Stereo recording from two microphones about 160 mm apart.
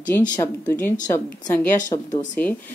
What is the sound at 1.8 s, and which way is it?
Speech, 50° left (ahead or behind).